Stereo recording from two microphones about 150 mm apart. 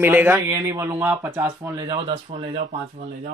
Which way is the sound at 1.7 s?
25° right (ahead or behind).